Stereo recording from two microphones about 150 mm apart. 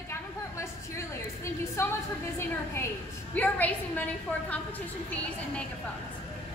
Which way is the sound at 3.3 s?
10° left (ahead or behind).